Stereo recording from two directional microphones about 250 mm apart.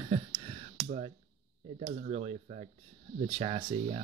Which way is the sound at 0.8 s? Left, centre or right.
Right.